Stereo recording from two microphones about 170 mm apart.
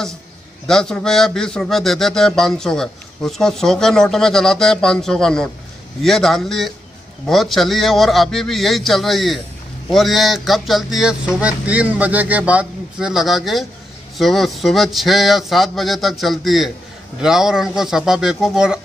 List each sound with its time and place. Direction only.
0.7 s speech: 5° left (ahead or behind)